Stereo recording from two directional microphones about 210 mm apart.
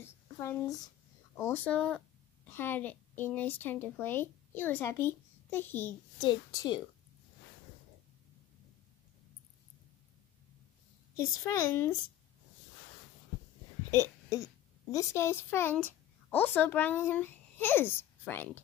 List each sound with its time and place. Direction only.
0.0 s a sound: 15° left (ahead or behind)
1.3 s a child's voice: 10° left (ahead or behind)
6.2 s a woman's voice: 20° left (ahead or behind)
11.1 s a child's voice: 15° left (ahead or behind)
14.0 s speech: 15° left (ahead or behind)